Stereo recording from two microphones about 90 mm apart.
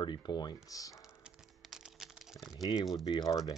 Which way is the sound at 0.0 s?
55° left (ahead or behind).